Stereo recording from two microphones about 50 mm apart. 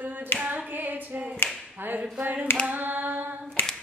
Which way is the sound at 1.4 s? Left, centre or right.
Left.